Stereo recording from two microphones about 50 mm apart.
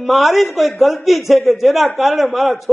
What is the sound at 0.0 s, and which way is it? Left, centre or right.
A man's voice, centre.